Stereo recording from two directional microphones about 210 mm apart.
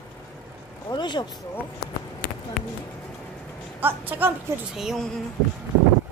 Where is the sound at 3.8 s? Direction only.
10° right (ahead or behind).